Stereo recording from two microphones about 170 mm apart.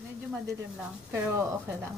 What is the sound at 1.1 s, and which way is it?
Speech, 15° right (ahead or behind).